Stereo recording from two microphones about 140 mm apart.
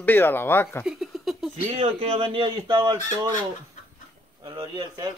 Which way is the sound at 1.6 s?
45° right (ahead or behind).